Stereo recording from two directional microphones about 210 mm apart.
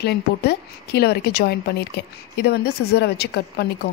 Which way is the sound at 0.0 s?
50° left (ahead or behind).